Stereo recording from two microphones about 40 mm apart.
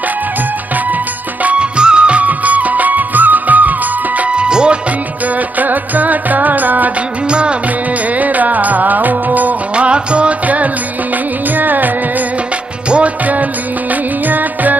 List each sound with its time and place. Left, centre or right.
1.6 s music of bollywood: right
4.2 s music: right
5.6 s music: right
7.2 s music: right
8.1 s music: right
9.8 s music: right
11.5 s music: right
12.9 s music: right